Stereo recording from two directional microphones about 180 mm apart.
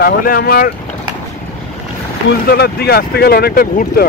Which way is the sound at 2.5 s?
60° left (ahead or behind).